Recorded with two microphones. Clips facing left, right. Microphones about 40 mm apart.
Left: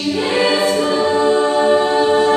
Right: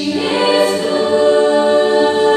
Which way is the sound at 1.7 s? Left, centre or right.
Centre.